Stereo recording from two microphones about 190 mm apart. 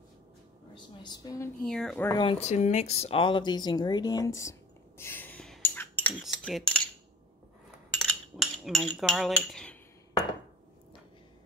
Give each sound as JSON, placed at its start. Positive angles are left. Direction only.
{"t": 1.0, "sound": "a woman's voice", "side_deg": 20}
{"t": 1.6, "sound": "speech", "side_deg": 5}
{"t": 2.2, "sound": "speech", "side_deg": 35}
{"t": 6.2, "sound": "cutlery", "side_deg": 0}
{"t": 8.0, "sound": "cutlery", "side_deg": 0}